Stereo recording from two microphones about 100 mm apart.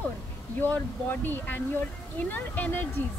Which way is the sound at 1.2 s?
20° left (ahead or behind).